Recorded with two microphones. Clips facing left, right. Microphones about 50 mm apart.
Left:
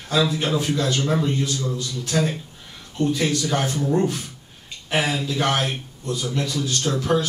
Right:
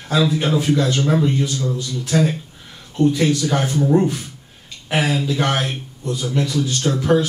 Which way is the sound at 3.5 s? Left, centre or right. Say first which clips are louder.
Right 4 dB; centre.